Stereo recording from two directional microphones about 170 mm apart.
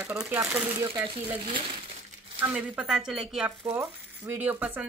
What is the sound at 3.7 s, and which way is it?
Speech, 15° right (ahead or behind).